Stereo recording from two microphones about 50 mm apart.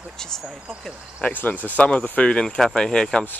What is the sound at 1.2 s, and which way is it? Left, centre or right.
Speech, left.